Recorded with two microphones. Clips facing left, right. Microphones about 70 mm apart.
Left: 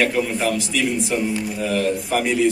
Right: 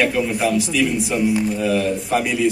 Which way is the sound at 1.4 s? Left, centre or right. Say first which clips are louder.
Right 3 dB; centre.